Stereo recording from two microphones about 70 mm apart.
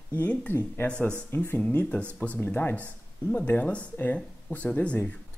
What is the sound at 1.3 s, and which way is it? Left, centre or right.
Speech, left.